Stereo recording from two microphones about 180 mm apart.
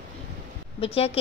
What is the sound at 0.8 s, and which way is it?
Speech, 30° left (ahead or behind).